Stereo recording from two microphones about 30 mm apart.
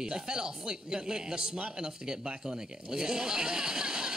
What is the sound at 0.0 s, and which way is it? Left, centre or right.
Speech, right.